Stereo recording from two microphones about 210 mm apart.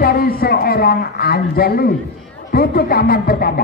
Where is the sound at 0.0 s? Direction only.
45° left (ahead or behind).